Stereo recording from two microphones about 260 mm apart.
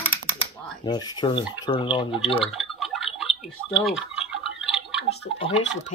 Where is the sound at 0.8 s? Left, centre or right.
Centre.